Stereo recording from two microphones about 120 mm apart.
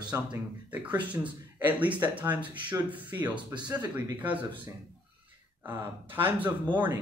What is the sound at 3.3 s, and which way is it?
Speech, 40° right (ahead or behind).